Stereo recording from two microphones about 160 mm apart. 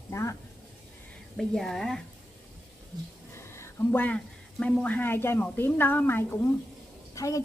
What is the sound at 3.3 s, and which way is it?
A woman's voice, 15° left (ahead or behind).